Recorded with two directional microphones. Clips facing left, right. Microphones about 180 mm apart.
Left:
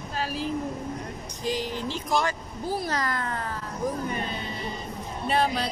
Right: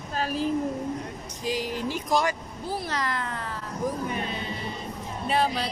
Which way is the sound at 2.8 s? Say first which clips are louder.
Left 1 dB; 45° left (ahead or behind).